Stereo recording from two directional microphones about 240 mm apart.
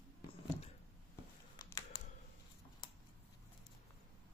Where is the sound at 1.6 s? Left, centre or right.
Centre.